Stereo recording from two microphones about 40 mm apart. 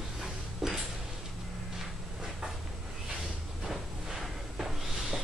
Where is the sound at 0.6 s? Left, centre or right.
Centre.